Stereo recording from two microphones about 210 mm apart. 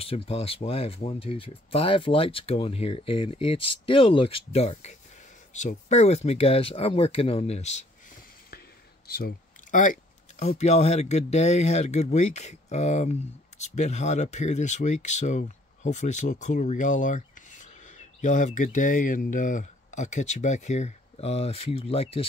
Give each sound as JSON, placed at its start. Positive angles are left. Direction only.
{"t": 0.0, "sound": "speech", "side_deg": 30}
{"t": 9.0, "sound": "a sound", "side_deg": 45}
{"t": 10.5, "sound": "speech", "side_deg": 30}